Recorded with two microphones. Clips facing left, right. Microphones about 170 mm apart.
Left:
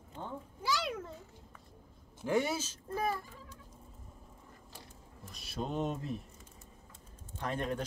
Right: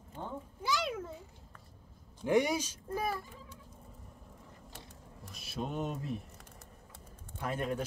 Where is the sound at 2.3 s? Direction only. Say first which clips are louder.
Right 3 dB; 15° right (ahead or behind).